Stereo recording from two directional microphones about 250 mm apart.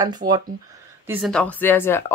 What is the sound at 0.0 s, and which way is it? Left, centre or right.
Speech, centre.